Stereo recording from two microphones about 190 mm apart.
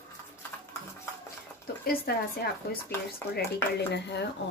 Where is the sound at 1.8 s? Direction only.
55° left (ahead or behind).